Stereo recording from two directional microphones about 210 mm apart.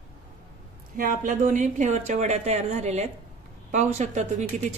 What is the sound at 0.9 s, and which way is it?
A woman's voice, 40° right (ahead or behind).